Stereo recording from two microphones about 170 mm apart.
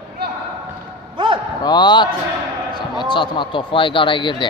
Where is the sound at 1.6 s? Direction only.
25° left (ahead or behind).